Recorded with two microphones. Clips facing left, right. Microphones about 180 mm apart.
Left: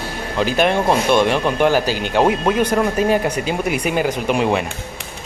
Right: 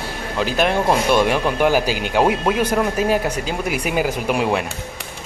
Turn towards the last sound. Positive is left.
turn(degrees=0)  # may be behind; listen again after turning